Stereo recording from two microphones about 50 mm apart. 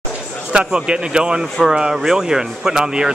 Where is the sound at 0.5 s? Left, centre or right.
Centre.